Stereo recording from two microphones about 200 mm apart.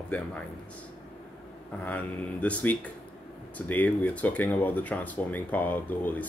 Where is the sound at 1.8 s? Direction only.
5° left (ahead or behind).